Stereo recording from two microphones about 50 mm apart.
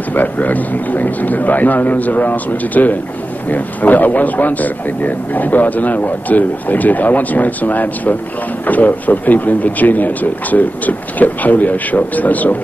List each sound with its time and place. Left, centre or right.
0.1 s a man's voice: left